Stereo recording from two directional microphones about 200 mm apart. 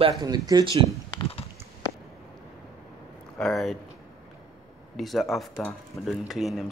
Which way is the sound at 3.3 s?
Centre (ahead or behind).